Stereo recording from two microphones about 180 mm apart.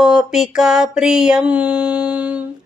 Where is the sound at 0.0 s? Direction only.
5° right (ahead or behind).